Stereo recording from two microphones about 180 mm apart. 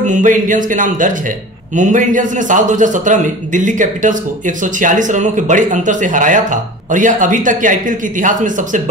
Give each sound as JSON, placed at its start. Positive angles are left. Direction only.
{"t": 0.0, "sound": "a man's voice", "side_deg": -45}